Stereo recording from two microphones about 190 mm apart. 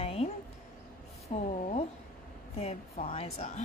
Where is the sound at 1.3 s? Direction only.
40° left (ahead or behind).